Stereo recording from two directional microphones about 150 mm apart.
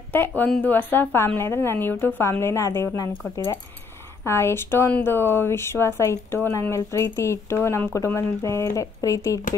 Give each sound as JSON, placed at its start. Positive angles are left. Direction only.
{"t": 0.4, "sound": "speech", "side_deg": 10}
{"t": 4.2, "sound": "speech", "side_deg": 15}